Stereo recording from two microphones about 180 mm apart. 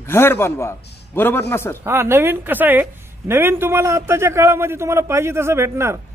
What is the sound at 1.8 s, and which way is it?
Speech, 15° right (ahead or behind).